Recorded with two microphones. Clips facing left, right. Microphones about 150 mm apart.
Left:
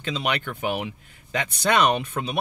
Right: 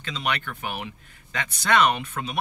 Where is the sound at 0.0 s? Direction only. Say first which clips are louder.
Left 3 dB; 20° left (ahead or behind).